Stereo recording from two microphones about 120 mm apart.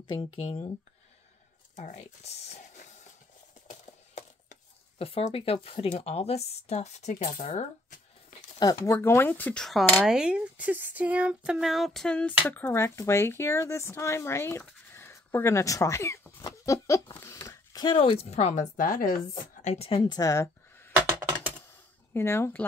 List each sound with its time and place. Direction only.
0.0 s speech: 50° left (ahead or behind)
1.8 s speech: 65° left (ahead or behind)
4.9 s speech: 55° left (ahead or behind); by 8.0 s 85° left
8.8 s speech: 25° left (ahead or behind)
17.1 s a sound: 25° left (ahead or behind)
17.8 s speech: 50° left (ahead or behind); by 18.9 s 85° left
19.6 s a woman's voice: 70° left (ahead or behind)
20.0 s speech: 30° left (ahead or behind)
22.1 s speech: 20° left (ahead or behind)